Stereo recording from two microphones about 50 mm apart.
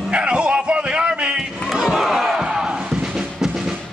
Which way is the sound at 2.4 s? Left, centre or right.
Centre.